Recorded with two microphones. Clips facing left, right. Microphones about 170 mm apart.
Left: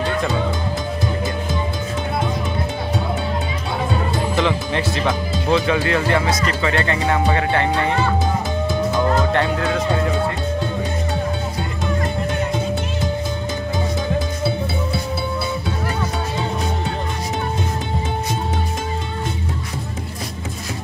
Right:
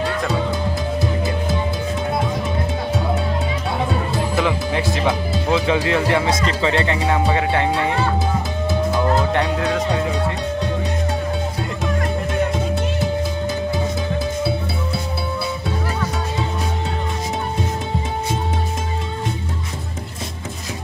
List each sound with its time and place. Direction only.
4.4 s speech: 5° right (ahead or behind)
5.7 s speech: 20° right (ahead or behind)